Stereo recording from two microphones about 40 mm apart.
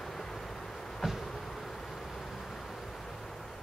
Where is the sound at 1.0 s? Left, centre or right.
Centre.